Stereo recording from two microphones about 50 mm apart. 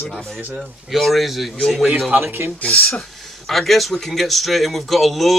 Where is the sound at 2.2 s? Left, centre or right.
Right.